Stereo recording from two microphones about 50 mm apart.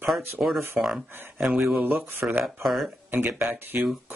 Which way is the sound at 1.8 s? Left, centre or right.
Right.